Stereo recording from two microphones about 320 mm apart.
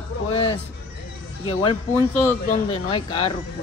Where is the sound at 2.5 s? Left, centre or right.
Centre.